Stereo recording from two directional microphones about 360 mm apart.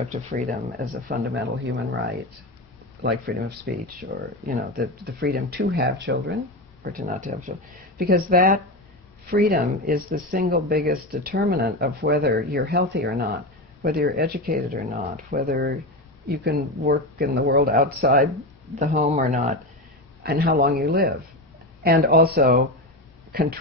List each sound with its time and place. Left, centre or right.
0.0 s speech: centre
3.0 s speech: right